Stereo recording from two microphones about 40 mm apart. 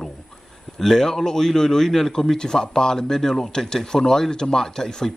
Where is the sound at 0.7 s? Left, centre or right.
Centre.